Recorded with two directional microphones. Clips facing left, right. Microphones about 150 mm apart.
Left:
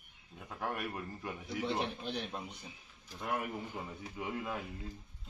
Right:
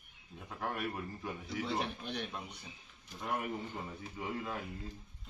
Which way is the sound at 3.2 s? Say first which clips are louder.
Even; 5° left (ahead or behind).